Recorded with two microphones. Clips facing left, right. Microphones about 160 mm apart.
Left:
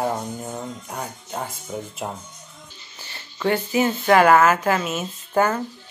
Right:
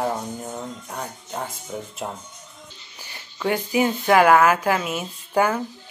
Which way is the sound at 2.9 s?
15° right (ahead or behind).